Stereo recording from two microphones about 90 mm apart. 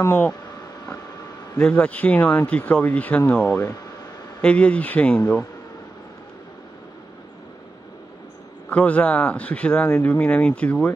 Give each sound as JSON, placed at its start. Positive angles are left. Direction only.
{"t": 1.6, "sound": "speech", "side_deg": 15}
{"t": 8.6, "sound": "speech", "side_deg": 15}